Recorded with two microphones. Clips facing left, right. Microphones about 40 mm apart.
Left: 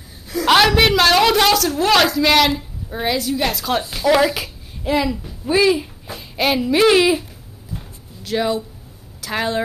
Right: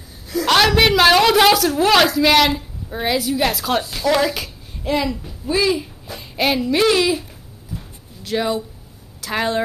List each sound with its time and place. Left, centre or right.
0.3 s a woman's voice: centre
5.5 s speech: centre
6.1 s a woman's voice: centre
6.9 s speech: centre
8.2 s speech: centre